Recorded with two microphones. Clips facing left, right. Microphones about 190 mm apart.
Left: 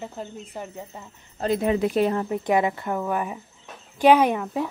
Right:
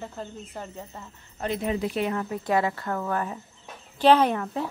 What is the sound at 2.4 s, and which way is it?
Speech, 20° left (ahead or behind).